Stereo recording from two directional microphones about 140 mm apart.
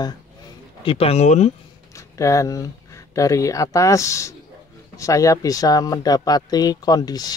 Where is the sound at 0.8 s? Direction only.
45° left (ahead or behind).